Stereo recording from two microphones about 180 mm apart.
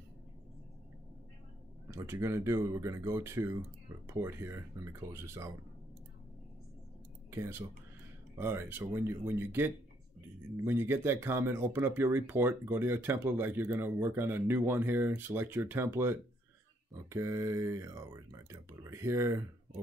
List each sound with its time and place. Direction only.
1.9 s speech: 15° right (ahead or behind)
7.2 s speech: 15° right (ahead or behind)